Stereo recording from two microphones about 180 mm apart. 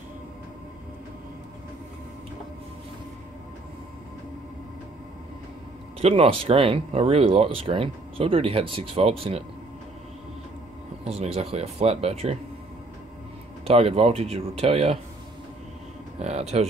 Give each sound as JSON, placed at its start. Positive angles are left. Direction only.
{"t": 5.9, "sound": "speech", "side_deg": -35}
{"t": 11.1, "sound": "speech", "side_deg": -35}
{"t": 13.7, "sound": "speech", "side_deg": -35}
{"t": 16.2, "sound": "speech", "side_deg": -35}